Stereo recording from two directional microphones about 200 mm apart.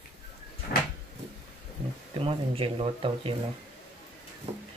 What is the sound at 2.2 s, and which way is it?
Speech, 25° right (ahead or behind).